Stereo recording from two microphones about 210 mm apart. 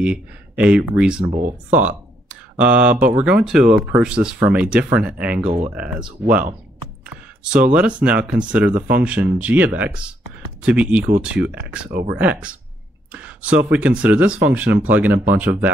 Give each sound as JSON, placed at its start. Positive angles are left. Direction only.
{"t": 0.0, "sound": "speech", "side_deg": -5}
{"t": 2.5, "sound": "speech", "side_deg": -5}
{"t": 6.2, "sound": "speech", "side_deg": -45}
{"t": 7.1, "sound": "speech", "side_deg": -5}